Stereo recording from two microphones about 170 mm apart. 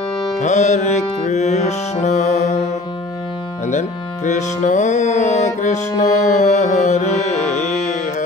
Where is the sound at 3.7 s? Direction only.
45° left (ahead or behind).